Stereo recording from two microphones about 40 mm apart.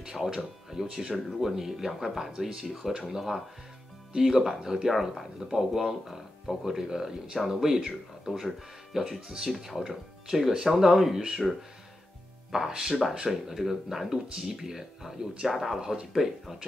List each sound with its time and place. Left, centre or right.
0.0 s speech: centre
8.9 s speech: centre
11.4 s speech: centre
12.4 s speech: centre